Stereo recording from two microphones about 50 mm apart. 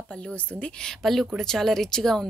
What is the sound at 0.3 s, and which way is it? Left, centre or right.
Speech, left.